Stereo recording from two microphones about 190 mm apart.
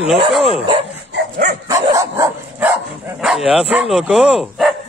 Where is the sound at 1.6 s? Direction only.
15° right (ahead or behind).